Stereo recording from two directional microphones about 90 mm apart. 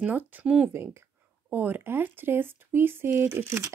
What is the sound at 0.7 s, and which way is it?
Speech, 30° right (ahead or behind).